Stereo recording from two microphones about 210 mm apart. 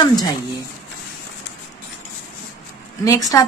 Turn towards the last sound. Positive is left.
turn(degrees=15)  # may be behind; listen again after turning